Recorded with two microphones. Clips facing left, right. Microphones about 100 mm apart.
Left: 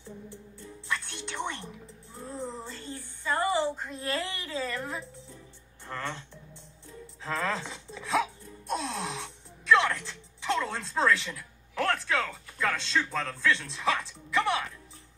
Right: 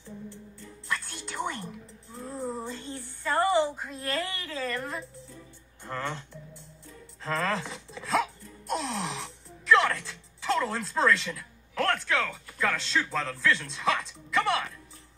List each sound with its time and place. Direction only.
0.9 s music: 5° right (ahead or behind); by 3.0 s 20° right (ahead or behind)
3.5 s a sound: 10° right (ahead or behind)
4.0 s a woman's voice: 20° left (ahead or behind)
5.9 s speech: 10° right (ahead or behind)
7.2 s music: centre (ahead or behind)
11.3 s speech: 10° left (ahead or behind)